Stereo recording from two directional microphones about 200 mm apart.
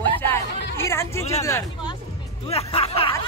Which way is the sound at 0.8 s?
15° left (ahead or behind).